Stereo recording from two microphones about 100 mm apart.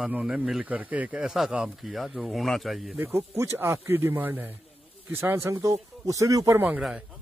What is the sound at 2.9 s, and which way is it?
A man's voice, 25° right (ahead or behind).